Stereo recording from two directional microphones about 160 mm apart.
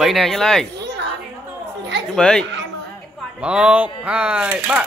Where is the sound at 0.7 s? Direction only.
90° right.